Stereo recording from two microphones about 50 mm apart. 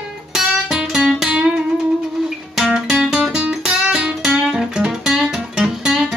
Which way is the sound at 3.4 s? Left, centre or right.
Right.